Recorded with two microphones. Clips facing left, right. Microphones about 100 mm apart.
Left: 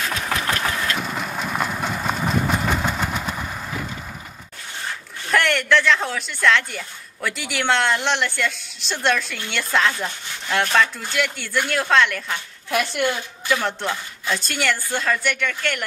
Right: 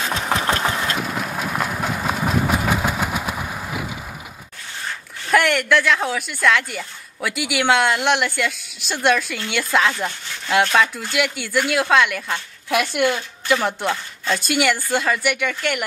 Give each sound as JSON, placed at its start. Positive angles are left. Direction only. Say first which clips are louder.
{"t": 0.0, "sound": "engine", "louder": "right 3 dB", "side_deg": -25}
{"t": 0.9, "sound": "engine", "louder": "right 2 dB", "side_deg": -5}
{"t": 5.3, "sound": "speech", "louder": "right 2 dB", "side_deg": -5}